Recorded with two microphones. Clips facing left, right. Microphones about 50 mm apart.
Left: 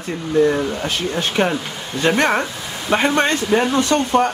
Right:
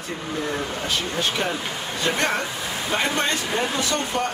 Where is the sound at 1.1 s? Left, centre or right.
Left.